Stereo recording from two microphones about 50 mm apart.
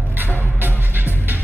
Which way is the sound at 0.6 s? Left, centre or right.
Right.